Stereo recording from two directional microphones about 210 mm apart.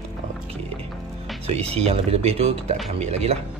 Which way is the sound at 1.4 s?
30° right (ahead or behind).